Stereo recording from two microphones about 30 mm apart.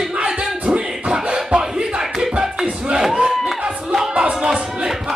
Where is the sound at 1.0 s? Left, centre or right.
Right.